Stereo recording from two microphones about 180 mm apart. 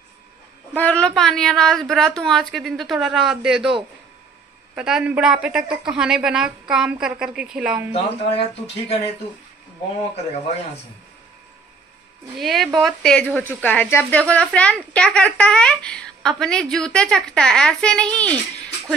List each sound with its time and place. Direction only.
0.7 s speech: 5° left (ahead or behind)
4.7 s speech: 5° right (ahead or behind)
7.9 s speech: 35° left (ahead or behind)
12.4 s speech: centre (ahead or behind)